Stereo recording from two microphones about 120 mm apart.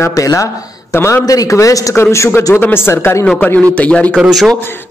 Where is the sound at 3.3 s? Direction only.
10° left (ahead or behind).